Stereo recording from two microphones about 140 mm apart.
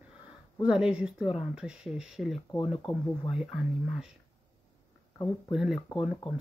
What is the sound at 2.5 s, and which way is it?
Speech, 35° left (ahead or behind).